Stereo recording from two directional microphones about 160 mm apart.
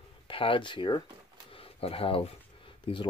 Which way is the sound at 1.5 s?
35° left (ahead or behind).